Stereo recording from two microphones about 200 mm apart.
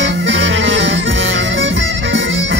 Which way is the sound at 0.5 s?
70° right (ahead or behind).